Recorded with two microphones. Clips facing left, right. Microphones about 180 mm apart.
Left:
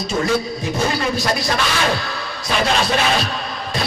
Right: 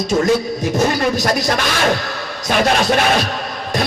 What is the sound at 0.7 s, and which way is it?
Music, 45° right (ahead or behind).